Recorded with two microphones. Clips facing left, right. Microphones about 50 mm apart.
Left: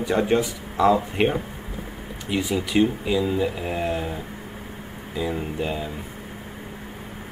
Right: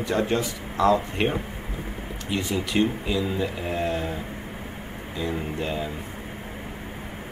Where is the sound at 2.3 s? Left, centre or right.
Centre.